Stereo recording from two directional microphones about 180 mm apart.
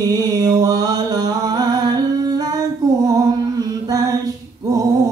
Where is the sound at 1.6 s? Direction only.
20° right (ahead or behind).